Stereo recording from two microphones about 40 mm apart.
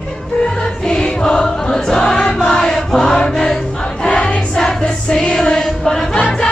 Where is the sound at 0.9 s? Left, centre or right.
Left.